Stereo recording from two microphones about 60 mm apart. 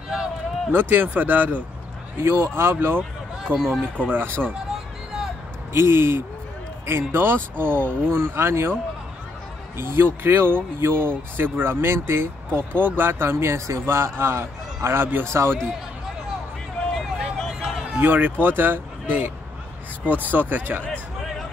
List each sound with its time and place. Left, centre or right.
0.7 s speech: right
2.1 s a man's voice: right
3.5 s speech: centre
4.0 s speech: right
5.7 s speech: right
9.8 s a man's voice: right
15.2 s a man's voice: right
16.9 s a sound: centre
17.9 s speech: right